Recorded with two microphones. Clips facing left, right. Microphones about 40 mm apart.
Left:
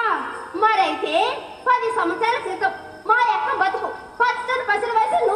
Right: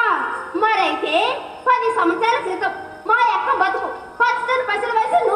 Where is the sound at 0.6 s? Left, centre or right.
Right.